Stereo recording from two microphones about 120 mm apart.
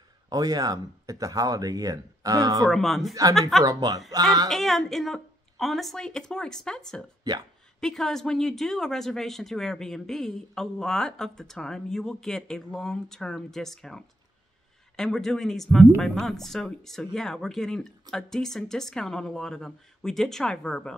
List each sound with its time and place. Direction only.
0.3 s speech: 30° right (ahead or behind)
2.6 s speech: centre (ahead or behind)
3.6 s speech: 30° right (ahead or behind)
4.5 s speech: centre (ahead or behind)
7.3 s speech: 30° right (ahead or behind)
7.8 s speech: 5° left (ahead or behind)